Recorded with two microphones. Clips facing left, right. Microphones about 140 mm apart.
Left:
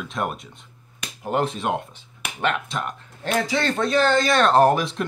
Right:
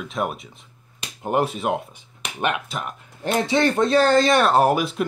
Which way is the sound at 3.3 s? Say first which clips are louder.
Right 3 dB; 20° right (ahead or behind).